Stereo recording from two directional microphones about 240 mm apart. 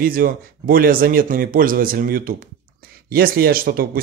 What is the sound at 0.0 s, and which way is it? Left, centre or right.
Speech, right.